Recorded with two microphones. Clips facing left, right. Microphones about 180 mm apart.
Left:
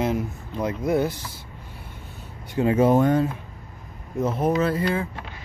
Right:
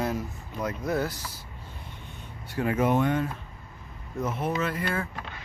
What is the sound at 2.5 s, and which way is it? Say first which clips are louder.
Speech: left 6 dB; 25° left (ahead or behind).